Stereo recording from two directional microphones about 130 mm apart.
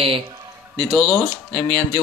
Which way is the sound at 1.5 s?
35° right (ahead or behind).